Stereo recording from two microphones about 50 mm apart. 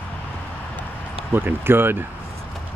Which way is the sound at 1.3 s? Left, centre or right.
Right.